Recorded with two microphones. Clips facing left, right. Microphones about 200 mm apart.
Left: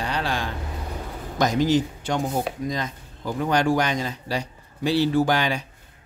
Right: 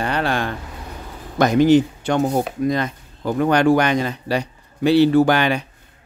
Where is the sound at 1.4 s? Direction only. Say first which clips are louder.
Right 7 dB; 60° right (ahead or behind).